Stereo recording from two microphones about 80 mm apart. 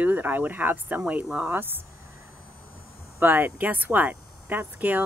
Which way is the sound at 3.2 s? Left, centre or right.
Right.